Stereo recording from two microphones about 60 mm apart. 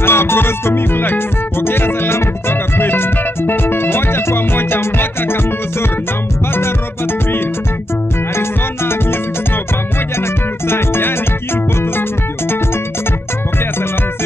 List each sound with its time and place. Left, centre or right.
0.0 s music: left
10.7 s music: left